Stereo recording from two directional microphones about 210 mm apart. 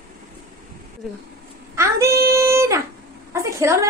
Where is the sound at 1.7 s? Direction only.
15° right (ahead or behind).